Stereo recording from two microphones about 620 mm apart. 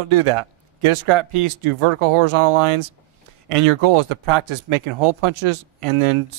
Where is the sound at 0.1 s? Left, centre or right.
Right.